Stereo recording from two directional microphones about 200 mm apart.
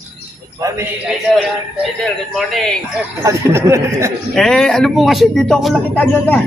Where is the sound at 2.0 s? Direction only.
Centre (ahead or behind).